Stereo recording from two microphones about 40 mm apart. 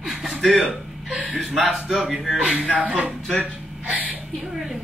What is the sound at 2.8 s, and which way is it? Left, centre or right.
Speech, right.